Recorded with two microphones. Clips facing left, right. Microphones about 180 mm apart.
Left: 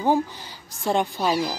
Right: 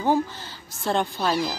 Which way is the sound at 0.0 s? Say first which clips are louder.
Left 1 dB; 15° left (ahead or behind).